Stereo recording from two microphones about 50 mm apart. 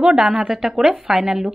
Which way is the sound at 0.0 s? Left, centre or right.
Centre.